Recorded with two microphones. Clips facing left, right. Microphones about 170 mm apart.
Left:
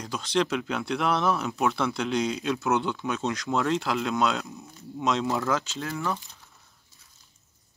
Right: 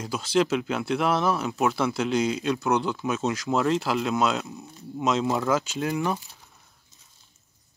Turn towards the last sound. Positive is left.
turn(degrees=-15)  # may be behind; listen again after turning